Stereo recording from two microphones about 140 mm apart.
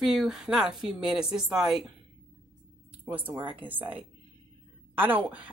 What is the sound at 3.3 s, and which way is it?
Speech, 35° right (ahead or behind).